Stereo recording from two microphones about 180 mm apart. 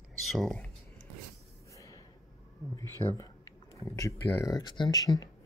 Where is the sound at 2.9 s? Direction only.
20° left (ahead or behind).